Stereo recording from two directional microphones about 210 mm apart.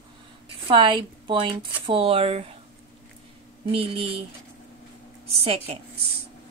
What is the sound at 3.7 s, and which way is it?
Speech, 25° right (ahead or behind).